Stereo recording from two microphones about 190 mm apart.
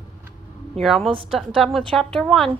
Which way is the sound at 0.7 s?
Centre (ahead or behind).